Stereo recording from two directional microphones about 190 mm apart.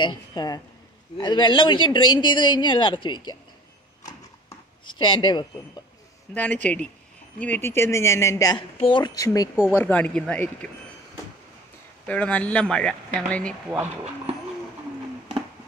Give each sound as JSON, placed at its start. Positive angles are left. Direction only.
{"t": 0.0, "sound": "speech", "side_deg": 20}
{"t": 4.5, "sound": "speech", "side_deg": 25}
{"t": 6.3, "sound": "speech", "side_deg": 10}
{"t": 12.1, "sound": "speech", "side_deg": 5}